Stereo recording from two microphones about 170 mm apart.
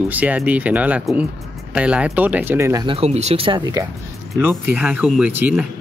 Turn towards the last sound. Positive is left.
turn(degrees=-10)  # may be behind; listen again after turning